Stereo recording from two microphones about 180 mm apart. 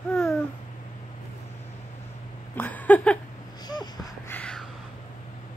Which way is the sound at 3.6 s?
20° left (ahead or behind).